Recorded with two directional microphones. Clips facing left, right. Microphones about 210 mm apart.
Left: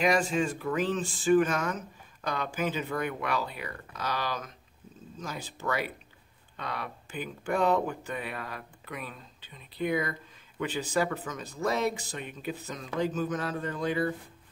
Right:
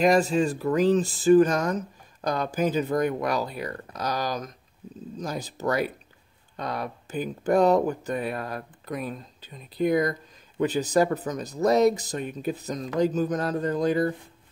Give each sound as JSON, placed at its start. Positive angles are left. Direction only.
{"t": 0.0, "sound": "speech", "side_deg": -40}